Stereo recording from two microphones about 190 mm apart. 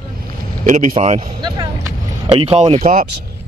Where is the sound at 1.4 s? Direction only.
25° right (ahead or behind).